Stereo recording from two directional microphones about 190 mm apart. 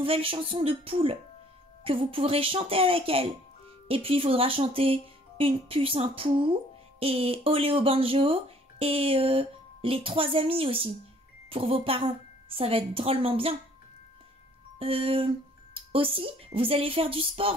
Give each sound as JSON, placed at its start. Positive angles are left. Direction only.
{"t": 0.0, "sound": "speech", "side_deg": -30}
{"t": 14.8, "sound": "speech", "side_deg": -30}